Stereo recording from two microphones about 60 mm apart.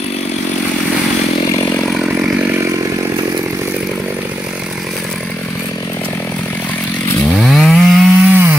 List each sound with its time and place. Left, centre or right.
7.3 s chainsaw: centre
8.3 s wood: right